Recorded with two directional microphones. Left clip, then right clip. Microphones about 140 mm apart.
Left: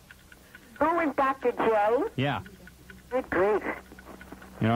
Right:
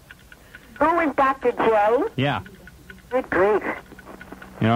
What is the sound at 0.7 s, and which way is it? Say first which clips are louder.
Speech: right 6 dB; 35° left (ahead or behind).